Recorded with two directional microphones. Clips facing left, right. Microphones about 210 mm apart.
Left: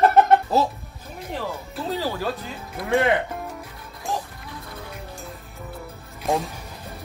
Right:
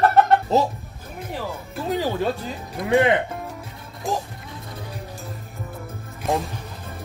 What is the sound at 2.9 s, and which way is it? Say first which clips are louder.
Speech: right 2 dB; 15° right (ahead or behind).